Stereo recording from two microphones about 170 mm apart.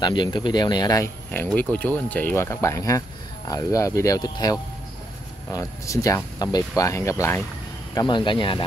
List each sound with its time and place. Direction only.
0.0 s speech: 25° left (ahead or behind)